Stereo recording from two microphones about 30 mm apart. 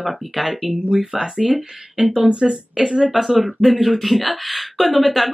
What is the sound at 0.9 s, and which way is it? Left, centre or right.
Speech, centre.